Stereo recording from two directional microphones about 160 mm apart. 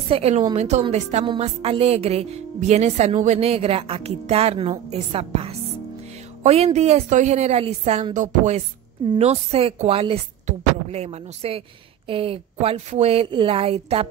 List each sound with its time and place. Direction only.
0.1 s a woman's voice: 40° right (ahead or behind)